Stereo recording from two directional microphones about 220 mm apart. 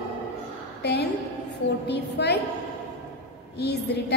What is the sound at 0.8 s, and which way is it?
A woman's voice, 50° left (ahead or behind).